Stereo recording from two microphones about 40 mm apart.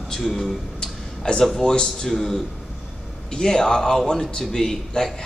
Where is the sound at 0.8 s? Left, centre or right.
Centre.